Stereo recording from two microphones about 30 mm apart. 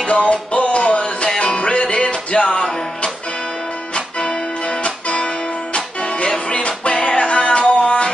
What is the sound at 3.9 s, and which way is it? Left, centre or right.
Music, left.